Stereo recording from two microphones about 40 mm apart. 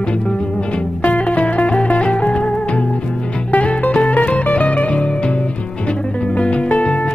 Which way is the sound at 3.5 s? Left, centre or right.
Left.